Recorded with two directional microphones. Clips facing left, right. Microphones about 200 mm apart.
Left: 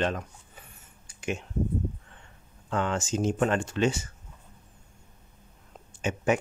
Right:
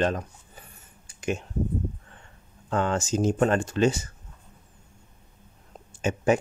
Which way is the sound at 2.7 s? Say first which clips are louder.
Right 3 dB; 40° right (ahead or behind).